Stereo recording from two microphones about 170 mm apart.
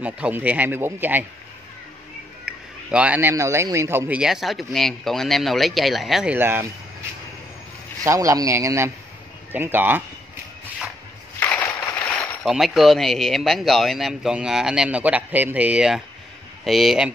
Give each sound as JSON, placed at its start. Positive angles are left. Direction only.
{"t": 0.0, "sound": "speech", "side_deg": -10}
{"t": 2.9, "sound": "speech", "side_deg": -10}
{"t": 6.3, "sound": "speech", "side_deg": -10}
{"t": 8.0, "sound": "speech", "side_deg": -20}
{"t": 11.3, "sound": "a sound", "side_deg": 10}
{"t": 12.4, "sound": "speech", "side_deg": 0}